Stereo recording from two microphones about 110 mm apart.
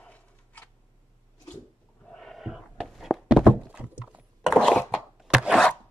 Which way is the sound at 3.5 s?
15° right (ahead or behind).